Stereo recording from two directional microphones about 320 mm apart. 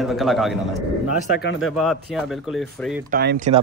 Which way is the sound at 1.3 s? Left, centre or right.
Left.